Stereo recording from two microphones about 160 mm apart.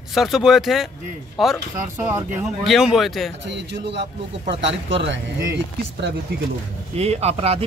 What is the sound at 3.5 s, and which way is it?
A man's voice, 90° right.